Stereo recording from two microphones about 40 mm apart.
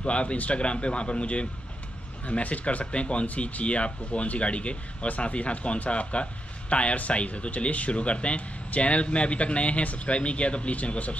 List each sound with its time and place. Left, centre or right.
0.0 s speech: left